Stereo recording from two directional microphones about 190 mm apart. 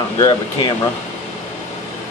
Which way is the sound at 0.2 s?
20° left (ahead or behind).